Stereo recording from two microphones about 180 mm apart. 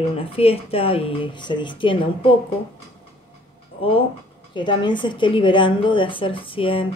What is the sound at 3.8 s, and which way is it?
A woman's voice, 30° left (ahead or behind).